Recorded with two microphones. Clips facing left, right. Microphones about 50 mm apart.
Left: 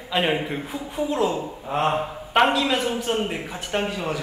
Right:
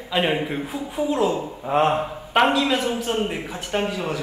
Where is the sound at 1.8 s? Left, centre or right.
Centre.